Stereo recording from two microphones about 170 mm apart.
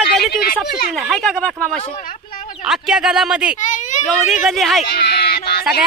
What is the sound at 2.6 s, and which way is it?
Speech, 5° right (ahead or behind).